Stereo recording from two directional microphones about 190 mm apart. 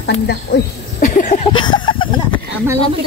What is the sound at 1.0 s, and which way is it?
Speech, 45° left (ahead or behind).